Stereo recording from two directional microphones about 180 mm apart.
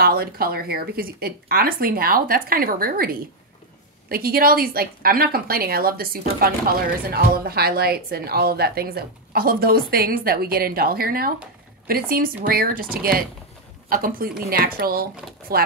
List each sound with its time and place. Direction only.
0.0 s a woman's voice: 60° right (ahead or behind)